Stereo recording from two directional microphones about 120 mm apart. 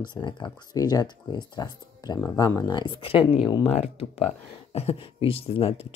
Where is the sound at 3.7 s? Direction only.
55° left (ahead or behind).